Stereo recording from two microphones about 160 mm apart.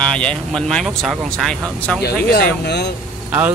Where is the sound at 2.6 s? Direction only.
90° left.